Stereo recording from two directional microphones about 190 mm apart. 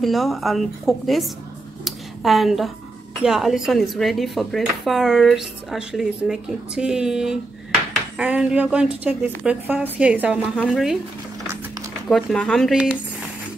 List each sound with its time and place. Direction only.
0.0 s speech: centre (ahead or behind)
1.9 s a sound: centre (ahead or behind)
3.2 s a woman's voice: centre (ahead or behind)
12.1 s speech: centre (ahead or behind)